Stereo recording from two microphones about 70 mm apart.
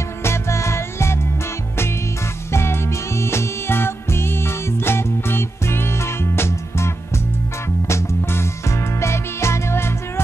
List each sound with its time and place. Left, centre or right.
0.2 s music: left
2.5 s music: left